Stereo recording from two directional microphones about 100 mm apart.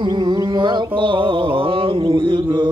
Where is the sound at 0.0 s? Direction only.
50° right (ahead or behind).